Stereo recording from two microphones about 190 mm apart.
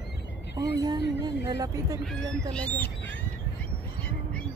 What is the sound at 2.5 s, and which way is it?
Speech, 10° left (ahead or behind).